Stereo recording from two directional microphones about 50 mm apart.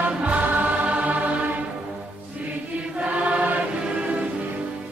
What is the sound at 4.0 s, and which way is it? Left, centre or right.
Music, right.